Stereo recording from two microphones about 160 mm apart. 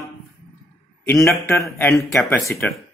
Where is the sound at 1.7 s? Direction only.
15° left (ahead or behind).